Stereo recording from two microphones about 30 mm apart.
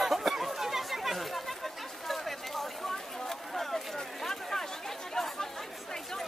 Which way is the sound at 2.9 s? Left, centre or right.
Centre.